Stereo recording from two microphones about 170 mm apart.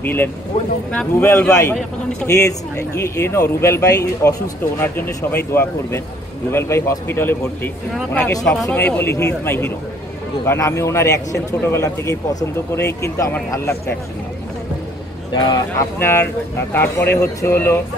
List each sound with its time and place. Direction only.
0.0 s speech: 10° left (ahead or behind)
15.3 s speech: 25° left (ahead or behind)